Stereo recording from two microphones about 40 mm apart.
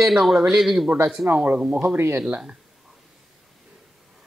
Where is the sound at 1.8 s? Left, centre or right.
Right.